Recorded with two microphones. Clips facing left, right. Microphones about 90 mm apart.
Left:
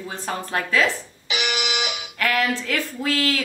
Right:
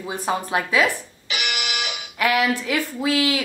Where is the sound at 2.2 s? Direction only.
15° right (ahead or behind).